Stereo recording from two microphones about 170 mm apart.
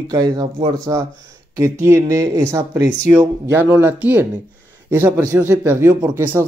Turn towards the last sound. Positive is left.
turn(degrees=-15)  # may be behind; listen again after turning